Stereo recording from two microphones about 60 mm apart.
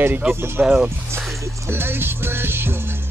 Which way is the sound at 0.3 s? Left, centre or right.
Right.